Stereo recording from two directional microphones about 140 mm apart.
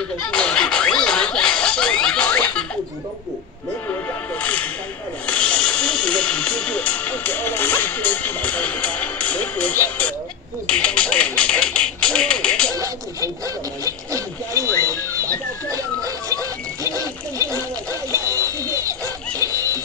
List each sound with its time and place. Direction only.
0.3 s snicker: 5° left (ahead or behind)
3.9 s music: 10° left (ahead or behind)
12.7 s a sound: 25° right (ahead or behind)
18.1 s music: 20° right (ahead or behind)